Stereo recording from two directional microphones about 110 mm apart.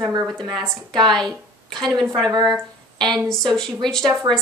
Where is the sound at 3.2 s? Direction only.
5° left (ahead or behind).